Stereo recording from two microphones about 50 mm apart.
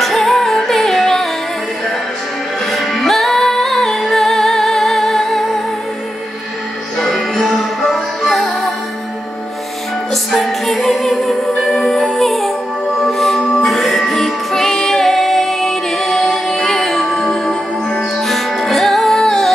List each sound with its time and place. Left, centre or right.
0.0 s music: centre
2.6 s music: centre
7.0 s music: centre
10.3 s music: centre
17.8 s music: left
18.2 s music: centre